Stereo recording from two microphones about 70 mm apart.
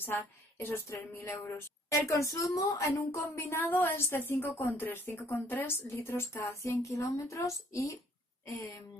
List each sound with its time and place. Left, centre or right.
0.0 s a woman's voice: left